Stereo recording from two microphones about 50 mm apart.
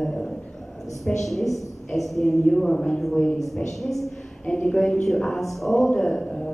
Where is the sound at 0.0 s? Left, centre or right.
Centre.